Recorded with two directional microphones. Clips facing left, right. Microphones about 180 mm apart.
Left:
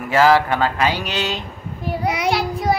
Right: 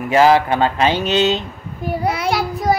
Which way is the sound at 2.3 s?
Centre (ahead or behind).